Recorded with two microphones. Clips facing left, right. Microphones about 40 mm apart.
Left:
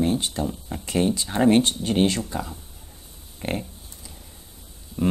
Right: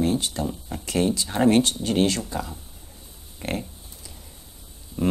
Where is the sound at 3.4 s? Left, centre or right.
Centre.